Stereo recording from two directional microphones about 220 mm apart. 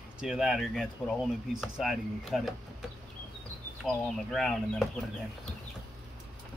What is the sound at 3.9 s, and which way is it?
Speech, centre (ahead or behind).